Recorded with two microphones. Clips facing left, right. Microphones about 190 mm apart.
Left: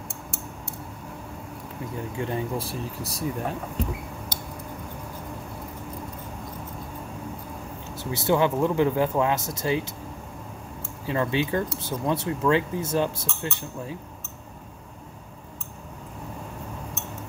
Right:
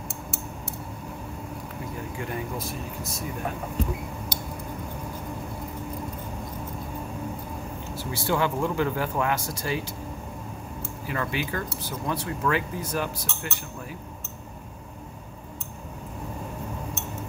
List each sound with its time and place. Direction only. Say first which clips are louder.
2.1 s speech: left 5 dB; 25° left (ahead or behind)
4.3 s a sound: right 2 dB; 15° right (ahead or behind)
7.9 s speech: left 4 dB; 20° left (ahead or behind)
11.1 s speech: left 5 dB; 25° left (ahead or behind)